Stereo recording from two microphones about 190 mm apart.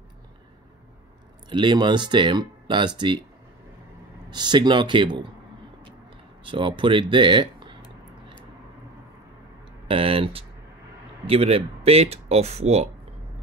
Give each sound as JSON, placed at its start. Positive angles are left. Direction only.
{"t": 1.5, "sound": "speech", "side_deg": -25}
{"t": 4.3, "sound": "speech", "side_deg": -25}
{"t": 6.4, "sound": "speech", "side_deg": -25}
{"t": 9.8, "sound": "speech", "side_deg": -30}